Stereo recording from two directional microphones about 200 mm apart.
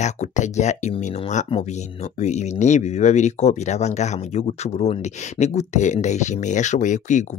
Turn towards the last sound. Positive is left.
turn(degrees=35)  # may be behind; listen again after turning